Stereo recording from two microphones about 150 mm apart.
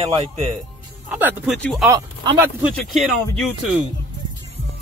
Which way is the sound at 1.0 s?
10° right (ahead or behind).